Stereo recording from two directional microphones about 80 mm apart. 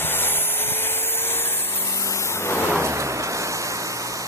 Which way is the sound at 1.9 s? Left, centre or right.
Left.